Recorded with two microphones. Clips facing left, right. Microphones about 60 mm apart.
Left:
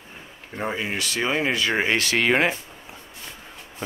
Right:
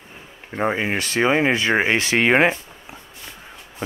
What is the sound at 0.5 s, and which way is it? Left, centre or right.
Speech, right.